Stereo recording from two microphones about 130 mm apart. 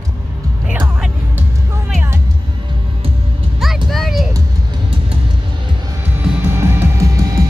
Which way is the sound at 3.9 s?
Centre (ahead or behind).